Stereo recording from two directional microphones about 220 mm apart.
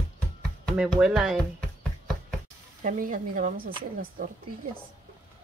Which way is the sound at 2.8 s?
35° right (ahead or behind).